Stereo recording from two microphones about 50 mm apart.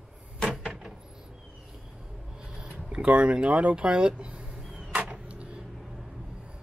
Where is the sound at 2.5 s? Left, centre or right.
Centre.